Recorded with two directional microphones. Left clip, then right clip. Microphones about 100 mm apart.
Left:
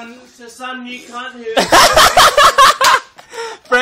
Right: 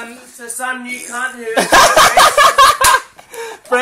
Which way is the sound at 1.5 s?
20° left (ahead or behind).